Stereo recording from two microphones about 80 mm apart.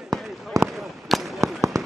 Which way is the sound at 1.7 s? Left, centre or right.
Right.